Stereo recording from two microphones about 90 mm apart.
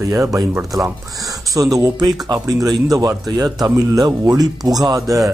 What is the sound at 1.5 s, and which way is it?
Speech, 40° right (ahead or behind).